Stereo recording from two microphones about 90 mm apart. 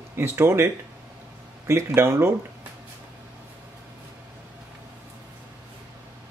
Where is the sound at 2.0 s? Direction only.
30° right (ahead or behind).